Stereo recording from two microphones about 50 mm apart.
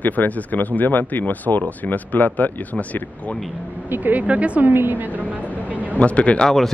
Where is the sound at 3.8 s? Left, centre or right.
Right.